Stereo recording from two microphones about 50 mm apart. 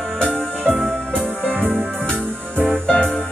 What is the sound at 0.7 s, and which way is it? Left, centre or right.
Music, centre.